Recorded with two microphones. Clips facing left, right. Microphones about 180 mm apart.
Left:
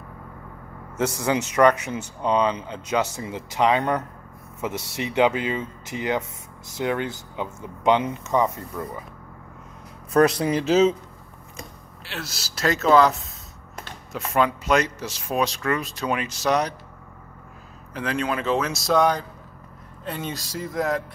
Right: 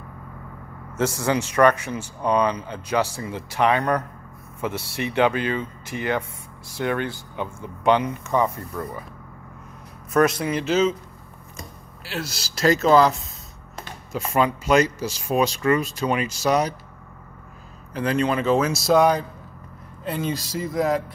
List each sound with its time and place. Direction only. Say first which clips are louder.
0.9 s speech: right 1 dB; 15° left (ahead or behind)
10.1 s speech: left 1 dB; 30° left (ahead or behind)
12.0 s speech: right 4 dB; centre (ahead or behind)
17.9 s speech: right 4 dB; centre (ahead or behind)